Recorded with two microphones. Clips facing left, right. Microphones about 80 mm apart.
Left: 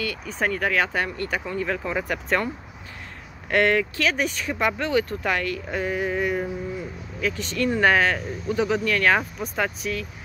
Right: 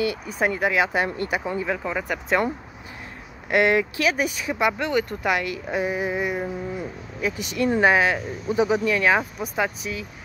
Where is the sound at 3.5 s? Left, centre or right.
Centre.